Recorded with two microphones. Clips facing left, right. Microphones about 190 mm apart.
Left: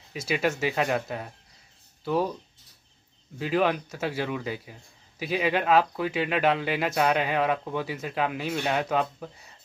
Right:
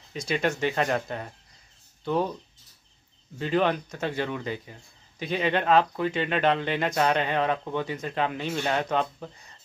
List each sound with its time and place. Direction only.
0.1 s speech: 5° left (ahead or behind)
3.3 s speech: 5° left (ahead or behind)